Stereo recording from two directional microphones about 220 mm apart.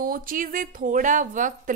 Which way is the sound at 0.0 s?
40° right (ahead or behind).